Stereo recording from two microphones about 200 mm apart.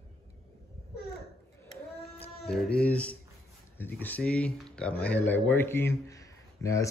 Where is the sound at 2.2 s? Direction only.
5° left (ahead or behind).